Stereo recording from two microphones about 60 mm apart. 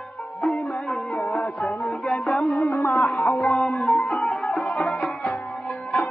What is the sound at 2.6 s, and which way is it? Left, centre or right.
Music, left.